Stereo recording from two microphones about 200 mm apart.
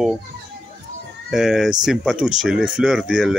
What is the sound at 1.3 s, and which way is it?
Speech, centre (ahead or behind).